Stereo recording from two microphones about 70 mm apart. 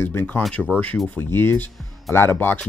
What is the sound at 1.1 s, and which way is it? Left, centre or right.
Speech, left.